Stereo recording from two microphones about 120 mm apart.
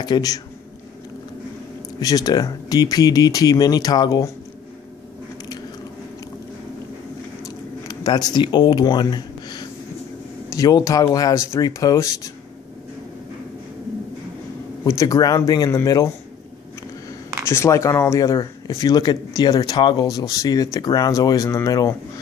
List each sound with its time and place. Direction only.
0.0 s speech: 35° left (ahead or behind)
2.0 s speech: 30° left (ahead or behind)
8.0 s speech: 35° left (ahead or behind)
14.9 s speech: 25° left (ahead or behind)
17.5 s speech: 25° left (ahead or behind)